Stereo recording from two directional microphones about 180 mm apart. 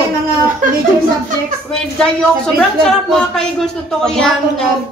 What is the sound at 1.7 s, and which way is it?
A woman's voice, 5° left (ahead or behind).